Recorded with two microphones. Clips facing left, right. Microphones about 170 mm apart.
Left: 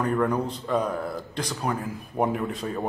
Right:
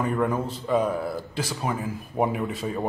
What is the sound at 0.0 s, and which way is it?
A man's voice, centre (ahead or behind).